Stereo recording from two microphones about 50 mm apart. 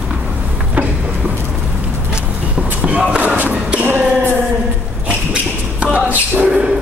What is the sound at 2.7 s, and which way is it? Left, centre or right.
Basketball bounce, right.